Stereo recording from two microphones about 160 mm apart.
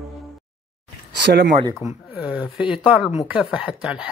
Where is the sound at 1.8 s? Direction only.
10° right (ahead or behind).